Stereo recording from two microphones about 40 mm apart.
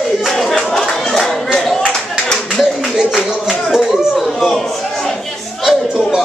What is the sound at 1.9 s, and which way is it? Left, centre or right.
Clapping, centre.